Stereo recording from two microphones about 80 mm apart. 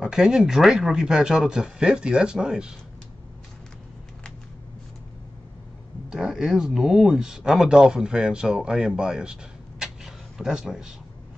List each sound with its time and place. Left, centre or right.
0.0 s speech: centre
6.0 s speech: centre